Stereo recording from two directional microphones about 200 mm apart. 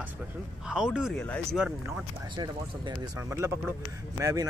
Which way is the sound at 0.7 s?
5° right (ahead or behind).